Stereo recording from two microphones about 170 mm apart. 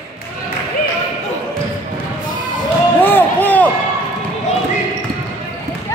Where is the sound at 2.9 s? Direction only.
10° left (ahead or behind).